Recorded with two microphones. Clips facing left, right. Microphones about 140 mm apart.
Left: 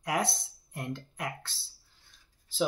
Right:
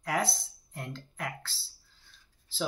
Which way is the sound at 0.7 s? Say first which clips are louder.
Left 4 dB; 15° left (ahead or behind).